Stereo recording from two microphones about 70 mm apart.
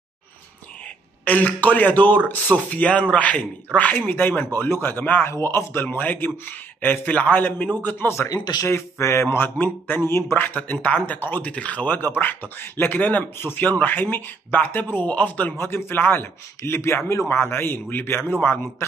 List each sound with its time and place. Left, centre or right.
1.2 s speech: left
5.2 s speech: left
8.3 s speech: left
8.6 s speech: left
15.5 s speech: left